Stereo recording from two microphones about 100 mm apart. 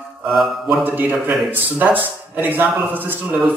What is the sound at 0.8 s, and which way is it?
A man's voice, 20° right (ahead or behind).